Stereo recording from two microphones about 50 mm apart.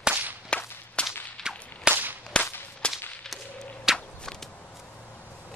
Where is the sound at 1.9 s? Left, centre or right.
Right.